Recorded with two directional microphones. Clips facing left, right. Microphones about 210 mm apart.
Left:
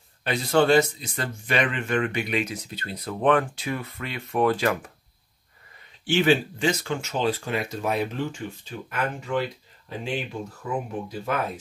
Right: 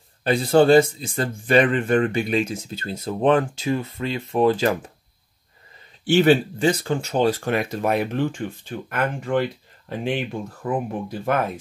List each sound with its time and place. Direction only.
0.2 s speech: 30° right (ahead or behind)
6.1 s speech: 40° right (ahead or behind)
7.2 s speech: 50° right (ahead or behind)